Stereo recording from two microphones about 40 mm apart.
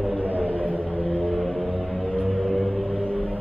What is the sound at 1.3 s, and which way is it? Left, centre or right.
Music, centre.